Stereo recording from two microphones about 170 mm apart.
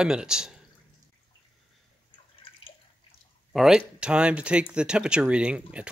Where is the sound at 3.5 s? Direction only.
5° right (ahead or behind).